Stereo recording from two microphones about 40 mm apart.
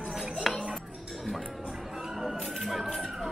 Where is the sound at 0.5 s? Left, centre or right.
Centre.